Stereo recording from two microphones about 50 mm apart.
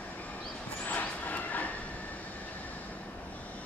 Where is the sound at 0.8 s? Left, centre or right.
Left.